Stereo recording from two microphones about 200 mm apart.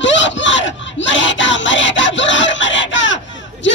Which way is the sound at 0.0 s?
65° left (ahead or behind).